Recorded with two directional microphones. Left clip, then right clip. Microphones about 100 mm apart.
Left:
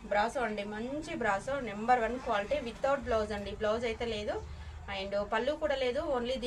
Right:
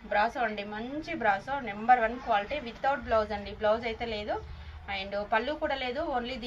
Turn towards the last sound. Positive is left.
turn(degrees=40)  # may be behind; listen again after turning